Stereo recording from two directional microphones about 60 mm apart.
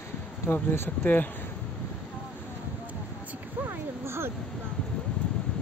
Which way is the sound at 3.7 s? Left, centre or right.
Right.